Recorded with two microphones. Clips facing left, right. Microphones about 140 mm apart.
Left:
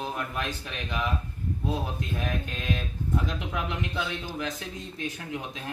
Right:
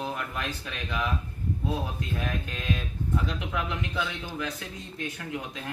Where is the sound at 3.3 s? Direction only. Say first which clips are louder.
Even; 20° left (ahead or behind).